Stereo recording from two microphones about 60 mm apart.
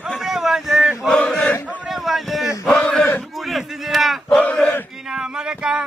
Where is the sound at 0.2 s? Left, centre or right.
Centre.